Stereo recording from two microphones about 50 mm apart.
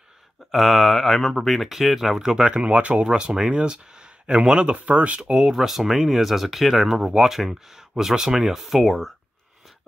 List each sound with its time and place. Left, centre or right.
0.5 s speech: centre; by 5.2 s right
5.2 s speech: centre